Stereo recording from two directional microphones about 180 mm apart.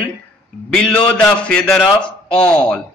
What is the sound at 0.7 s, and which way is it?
A man's voice, 5° left (ahead or behind).